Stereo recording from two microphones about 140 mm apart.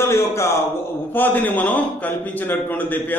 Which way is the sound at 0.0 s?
20° left (ahead or behind).